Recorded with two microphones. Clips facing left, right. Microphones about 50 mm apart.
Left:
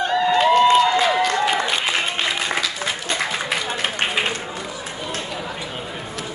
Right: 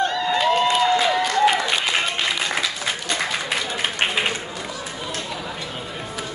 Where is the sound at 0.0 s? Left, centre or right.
Centre.